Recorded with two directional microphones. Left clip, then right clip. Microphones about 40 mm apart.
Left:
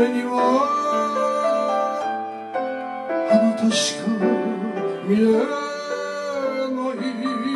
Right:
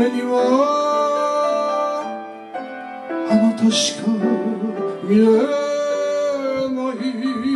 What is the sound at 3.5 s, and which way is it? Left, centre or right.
Speech, centre.